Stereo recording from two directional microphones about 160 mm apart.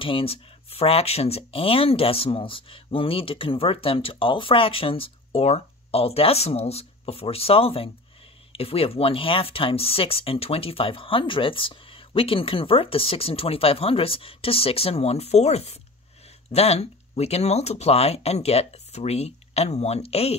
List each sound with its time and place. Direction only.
0.0 s speech: 35° left (ahead or behind)